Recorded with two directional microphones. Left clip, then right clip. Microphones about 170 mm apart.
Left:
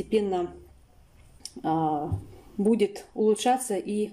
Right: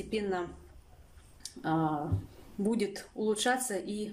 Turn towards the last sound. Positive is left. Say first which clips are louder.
# left 7 dB
turn(degrees=15)  # may be behind; listen again after turning